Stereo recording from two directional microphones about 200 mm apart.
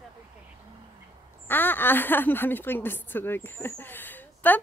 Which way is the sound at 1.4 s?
10° left (ahead or behind).